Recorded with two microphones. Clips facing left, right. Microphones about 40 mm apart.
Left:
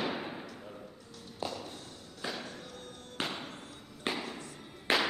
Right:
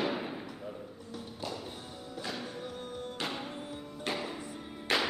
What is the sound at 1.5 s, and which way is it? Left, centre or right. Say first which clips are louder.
Music: right 1 dB; centre.